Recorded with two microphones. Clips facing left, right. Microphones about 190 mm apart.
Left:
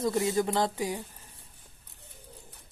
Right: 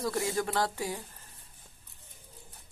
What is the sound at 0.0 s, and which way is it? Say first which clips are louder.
Speech: left 4 dB; 20° left (ahead or behind).